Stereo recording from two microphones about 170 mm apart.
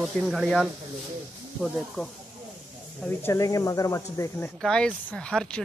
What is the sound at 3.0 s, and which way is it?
Speech, 10° left (ahead or behind).